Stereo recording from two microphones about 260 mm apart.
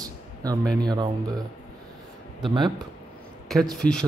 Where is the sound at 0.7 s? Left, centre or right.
Centre.